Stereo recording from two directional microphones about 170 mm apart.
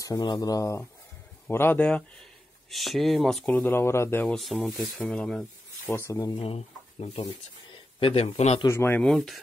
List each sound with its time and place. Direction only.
0.0 s speech: 20° left (ahead or behind)
6.4 s speech: 35° left (ahead or behind)
8.6 s speech: 15° left (ahead or behind)